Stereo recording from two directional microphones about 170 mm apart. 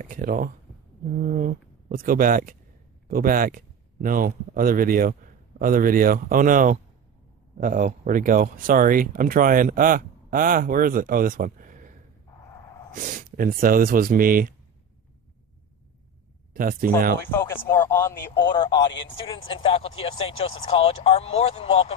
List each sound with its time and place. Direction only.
0.0 s speech: 55° right (ahead or behind)
12.9 s speech: 50° right (ahead or behind)
16.5 s speech: 55° right (ahead or behind)
17.3 s speech: 15° left (ahead or behind)
18.5 s speech: 25° left (ahead or behind)